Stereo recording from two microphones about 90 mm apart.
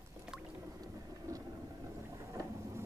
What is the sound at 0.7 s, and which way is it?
Boat, 35° right (ahead or behind).